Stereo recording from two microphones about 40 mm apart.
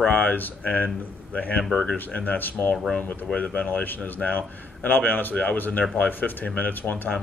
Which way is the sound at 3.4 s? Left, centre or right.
Left.